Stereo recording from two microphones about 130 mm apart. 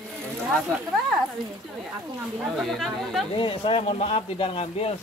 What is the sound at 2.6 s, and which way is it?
Speech, centre (ahead or behind).